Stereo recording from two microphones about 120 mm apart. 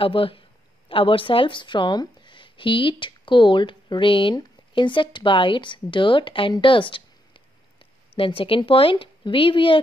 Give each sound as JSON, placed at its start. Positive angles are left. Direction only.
{"t": 0.0, "sound": "speech", "side_deg": 45}